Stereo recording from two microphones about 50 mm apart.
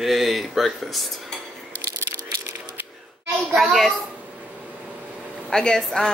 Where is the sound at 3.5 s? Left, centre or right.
Centre.